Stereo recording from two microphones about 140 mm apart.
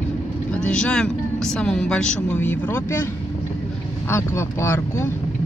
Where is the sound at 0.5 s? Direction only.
5° left (ahead or behind).